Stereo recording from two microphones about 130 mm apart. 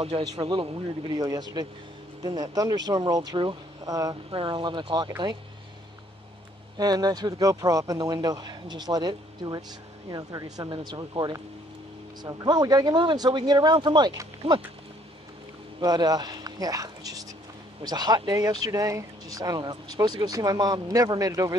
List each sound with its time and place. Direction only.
0.4 s speech: 40° right (ahead or behind)
4.3 s speech: 40° right (ahead or behind)
6.8 s speech: 30° right (ahead or behind)
14.4 s speech: 50° right (ahead or behind)
15.8 s speech: 30° right (ahead or behind)